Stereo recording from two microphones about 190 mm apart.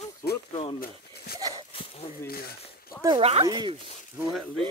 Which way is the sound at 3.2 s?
30° right (ahead or behind).